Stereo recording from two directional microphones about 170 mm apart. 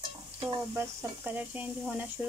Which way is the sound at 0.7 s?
10° right (ahead or behind).